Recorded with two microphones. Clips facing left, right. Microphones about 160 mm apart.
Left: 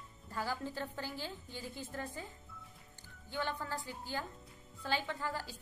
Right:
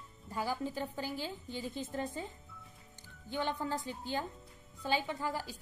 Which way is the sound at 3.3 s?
20° right (ahead or behind).